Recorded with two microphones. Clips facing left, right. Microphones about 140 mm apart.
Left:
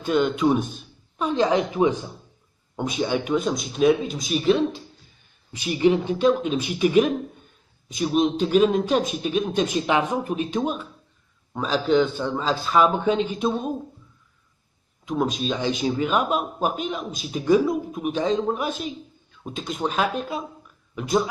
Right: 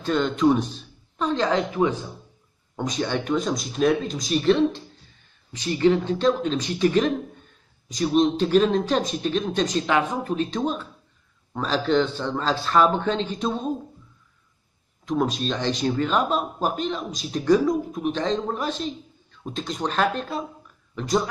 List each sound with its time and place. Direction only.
0.0 s a man's voice: 10° left (ahead or behind)
15.0 s a man's voice: centre (ahead or behind)